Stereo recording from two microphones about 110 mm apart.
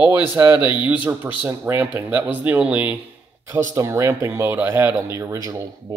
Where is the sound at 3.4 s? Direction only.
25° right (ahead or behind).